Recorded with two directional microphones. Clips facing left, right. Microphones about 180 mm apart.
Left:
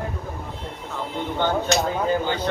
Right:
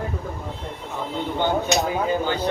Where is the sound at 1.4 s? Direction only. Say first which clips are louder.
Even; 10° right (ahead or behind).